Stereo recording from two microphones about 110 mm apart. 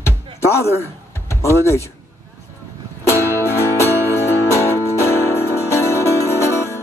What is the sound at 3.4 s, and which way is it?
Music, 25° left (ahead or behind).